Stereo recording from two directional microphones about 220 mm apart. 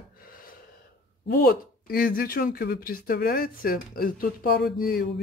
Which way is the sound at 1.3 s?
45° left (ahead or behind).